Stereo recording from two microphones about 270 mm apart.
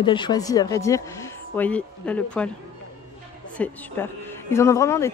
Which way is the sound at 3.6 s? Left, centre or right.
Centre.